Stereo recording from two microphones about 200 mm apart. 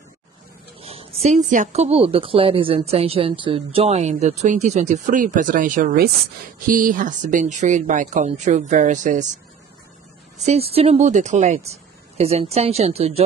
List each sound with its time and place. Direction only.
0.7 s a woman's voice: 30° right (ahead or behind)
10.4 s a woman's voice: 30° right (ahead or behind)